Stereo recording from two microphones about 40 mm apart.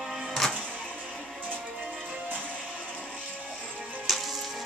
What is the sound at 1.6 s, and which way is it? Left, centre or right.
Music, right.